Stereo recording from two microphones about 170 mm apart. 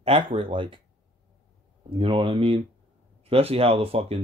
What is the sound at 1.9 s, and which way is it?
Speech, 30° right (ahead or behind).